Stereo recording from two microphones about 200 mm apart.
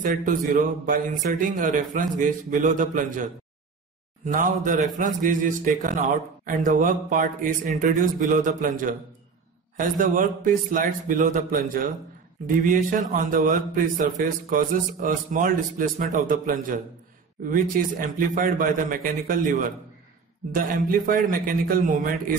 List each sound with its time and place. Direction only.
0.0 s a man's voice: 40° right (ahead or behind)